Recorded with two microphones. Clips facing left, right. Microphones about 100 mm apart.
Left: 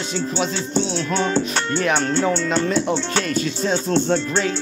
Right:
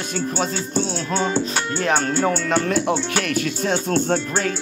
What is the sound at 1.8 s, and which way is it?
Music, 40° right (ahead or behind).